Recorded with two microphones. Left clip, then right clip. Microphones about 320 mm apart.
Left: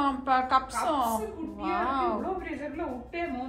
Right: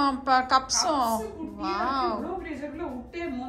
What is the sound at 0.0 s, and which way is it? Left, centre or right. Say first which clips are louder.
A woman's voice: right 3 dB; centre.